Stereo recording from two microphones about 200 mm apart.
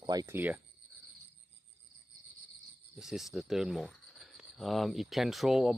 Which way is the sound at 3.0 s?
Centre (ahead or behind).